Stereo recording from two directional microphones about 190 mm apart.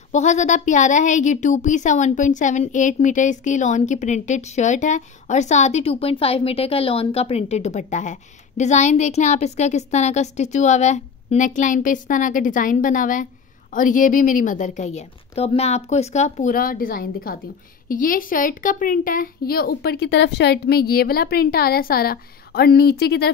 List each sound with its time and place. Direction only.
0.1 s a woman's voice: 40° left (ahead or behind); by 23.3 s 60° left (ahead or behind)